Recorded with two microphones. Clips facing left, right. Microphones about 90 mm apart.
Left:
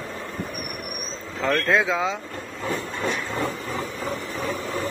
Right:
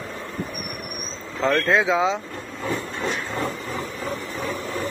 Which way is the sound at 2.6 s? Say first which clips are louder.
Even; 15° left (ahead or behind).